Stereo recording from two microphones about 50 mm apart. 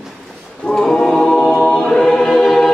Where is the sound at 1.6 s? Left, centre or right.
Centre.